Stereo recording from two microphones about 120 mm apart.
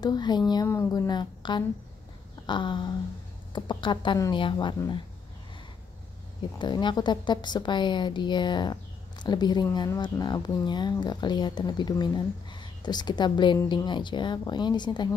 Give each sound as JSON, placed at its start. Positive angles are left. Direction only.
{"t": 0.0, "sound": "speech", "side_deg": 35}
{"t": 0.7, "sound": "speech", "side_deg": 20}
{"t": 1.0, "sound": "speech", "side_deg": 40}
{"t": 2.4, "sound": "a sound", "side_deg": 40}
{"t": 3.5, "sound": "speech", "side_deg": 40}
{"t": 6.6, "sound": "speech", "side_deg": 40}